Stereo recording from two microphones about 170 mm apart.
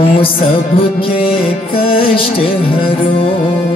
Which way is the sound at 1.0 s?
30° left (ahead or behind).